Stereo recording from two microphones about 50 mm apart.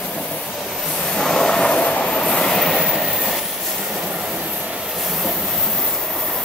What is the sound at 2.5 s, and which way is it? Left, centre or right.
Train, centre.